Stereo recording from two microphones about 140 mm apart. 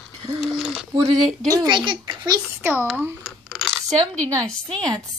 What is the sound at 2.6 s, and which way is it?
Speech, 15° right (ahead or behind).